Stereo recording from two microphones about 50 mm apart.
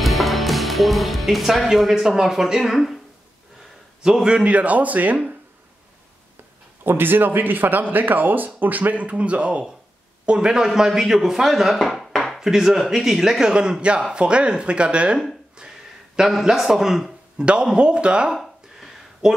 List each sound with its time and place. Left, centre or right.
0.0 s speech: centre
4.0 s a man's voice: centre; by 5.2 s right
6.8 s a man's voice: right; by 11.8 s centre
11.8 s dishes: centre
12.4 s a man's voice: centre
16.2 s a man's voice: centre
17.5 s a man's voice: centre
18.3 s a sound: centre